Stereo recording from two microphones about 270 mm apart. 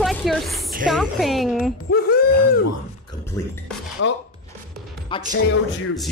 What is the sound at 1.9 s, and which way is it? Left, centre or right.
Speech, left.